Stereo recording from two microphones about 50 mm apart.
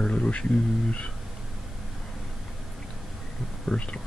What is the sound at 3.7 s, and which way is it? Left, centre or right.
Speech, left.